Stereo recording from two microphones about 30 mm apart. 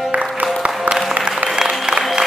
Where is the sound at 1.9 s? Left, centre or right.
Right.